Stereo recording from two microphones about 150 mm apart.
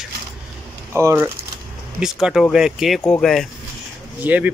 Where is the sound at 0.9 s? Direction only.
15° right (ahead or behind).